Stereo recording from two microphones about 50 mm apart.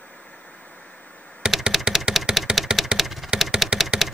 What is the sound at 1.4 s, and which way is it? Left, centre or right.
Computer keyboard, centre.